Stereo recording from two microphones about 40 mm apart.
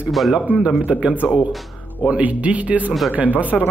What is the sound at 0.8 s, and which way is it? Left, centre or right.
Speech, right.